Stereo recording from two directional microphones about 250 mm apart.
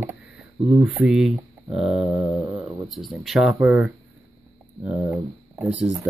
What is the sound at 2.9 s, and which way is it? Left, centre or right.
Speech, centre.